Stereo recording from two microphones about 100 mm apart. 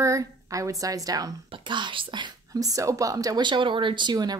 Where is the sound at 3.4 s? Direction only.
55° right (ahead or behind).